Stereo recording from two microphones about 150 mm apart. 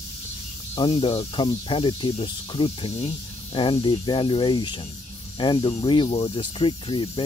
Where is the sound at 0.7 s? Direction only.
35° left (ahead or behind).